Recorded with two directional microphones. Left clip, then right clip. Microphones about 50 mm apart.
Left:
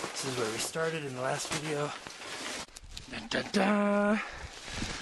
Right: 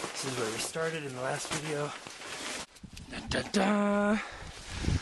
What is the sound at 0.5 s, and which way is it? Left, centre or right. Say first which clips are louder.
Speech: left 1 dB; left.